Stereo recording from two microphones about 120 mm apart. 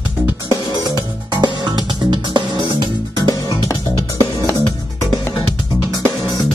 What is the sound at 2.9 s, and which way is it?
Music, 35° left (ahead or behind).